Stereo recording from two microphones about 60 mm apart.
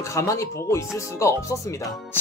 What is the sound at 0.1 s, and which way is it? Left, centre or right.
Speech, left.